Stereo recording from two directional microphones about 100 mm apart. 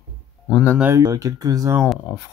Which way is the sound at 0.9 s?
35° right (ahead or behind).